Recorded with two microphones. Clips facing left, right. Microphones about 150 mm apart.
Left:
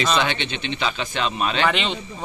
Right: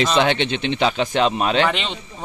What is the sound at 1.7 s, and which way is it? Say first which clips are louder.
Speech: left 1 dB; centre (ahead or behind).